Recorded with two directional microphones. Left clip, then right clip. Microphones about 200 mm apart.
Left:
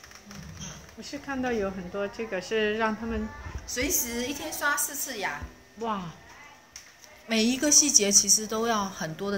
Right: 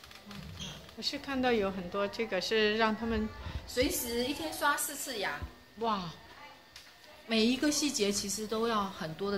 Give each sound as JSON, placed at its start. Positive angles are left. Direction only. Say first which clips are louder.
{"t": 1.1, "sound": "a woman's voice", "louder": "left 1 dB", "side_deg": -15}
{"t": 3.7, "sound": "a woman's voice", "louder": "left 2 dB", "side_deg": 45}
{"t": 5.8, "sound": "speech", "louder": "left 1 dB", "side_deg": -10}
{"t": 7.2, "sound": "a woman's voice", "louder": "left 4 dB", "side_deg": 50}